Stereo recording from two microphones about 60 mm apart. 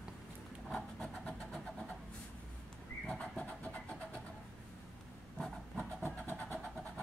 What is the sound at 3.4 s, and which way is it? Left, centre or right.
Vehicle, left.